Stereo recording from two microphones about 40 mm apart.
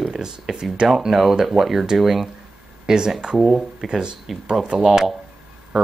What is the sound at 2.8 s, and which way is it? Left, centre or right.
Speech, centre.